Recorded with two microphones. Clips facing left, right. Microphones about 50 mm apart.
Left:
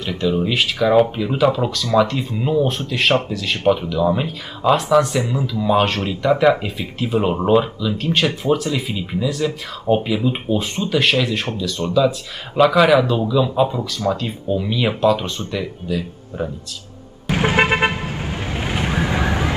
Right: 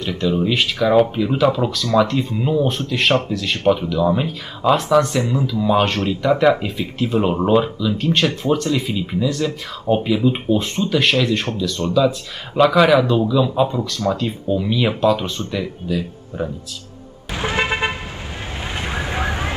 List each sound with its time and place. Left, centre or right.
0.0 s speech: centre
17.3 s vehicle: left